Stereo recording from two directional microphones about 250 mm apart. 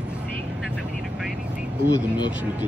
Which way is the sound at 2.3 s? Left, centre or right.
Centre.